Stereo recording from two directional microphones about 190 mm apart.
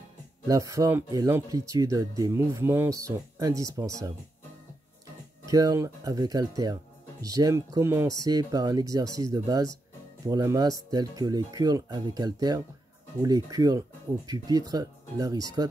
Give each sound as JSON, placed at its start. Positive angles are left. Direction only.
{"t": 0.5, "sound": "speech", "side_deg": -15}
{"t": 5.4, "sound": "speech", "side_deg": -20}